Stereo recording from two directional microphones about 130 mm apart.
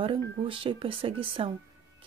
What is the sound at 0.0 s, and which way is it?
Speech, 40° right (ahead or behind).